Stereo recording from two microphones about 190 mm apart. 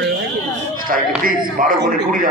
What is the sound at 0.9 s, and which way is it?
A man's voice, 45° right (ahead or behind).